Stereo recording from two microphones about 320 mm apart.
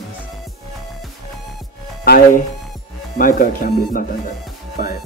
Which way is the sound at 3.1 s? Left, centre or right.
Left.